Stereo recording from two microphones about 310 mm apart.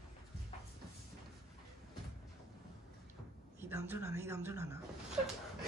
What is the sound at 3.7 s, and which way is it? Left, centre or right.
Speech, centre.